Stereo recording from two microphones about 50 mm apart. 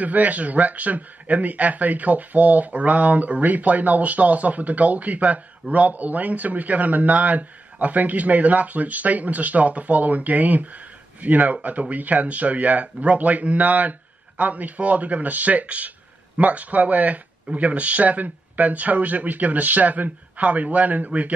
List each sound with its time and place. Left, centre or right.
0.0 s speech: right